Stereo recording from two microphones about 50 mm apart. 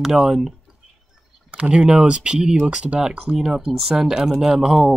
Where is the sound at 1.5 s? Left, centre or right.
Right.